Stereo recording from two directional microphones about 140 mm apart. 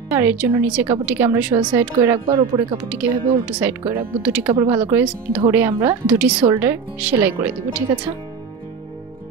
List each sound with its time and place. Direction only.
0.1 s speech: 15° right (ahead or behind)
2.1 s speech: 30° right (ahead or behind)
2.9 s speech: 10° right (ahead or behind)